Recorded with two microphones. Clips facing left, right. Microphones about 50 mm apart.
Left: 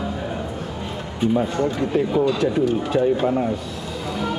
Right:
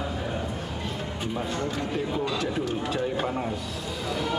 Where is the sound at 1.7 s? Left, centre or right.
Centre.